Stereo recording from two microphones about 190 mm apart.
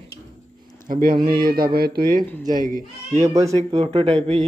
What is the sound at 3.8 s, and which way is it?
Speech, 30° right (ahead or behind).